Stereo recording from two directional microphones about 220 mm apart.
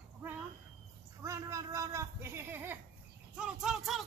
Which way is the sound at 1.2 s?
15° right (ahead or behind).